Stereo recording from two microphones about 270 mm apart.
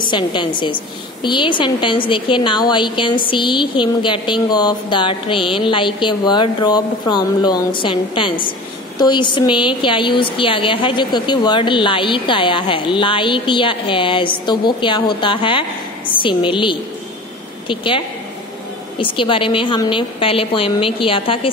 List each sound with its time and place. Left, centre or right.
0.1 s a woman's voice: centre